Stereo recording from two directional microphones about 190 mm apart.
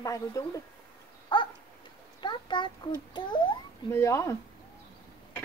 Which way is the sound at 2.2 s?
25° left (ahead or behind).